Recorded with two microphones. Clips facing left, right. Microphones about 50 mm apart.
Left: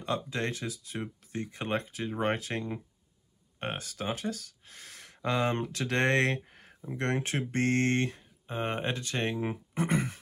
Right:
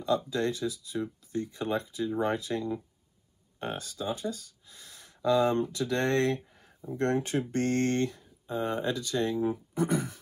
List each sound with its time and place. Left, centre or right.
0.0 s speech: left